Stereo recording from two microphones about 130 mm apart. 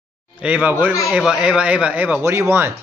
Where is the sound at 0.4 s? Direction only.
10° right (ahead or behind).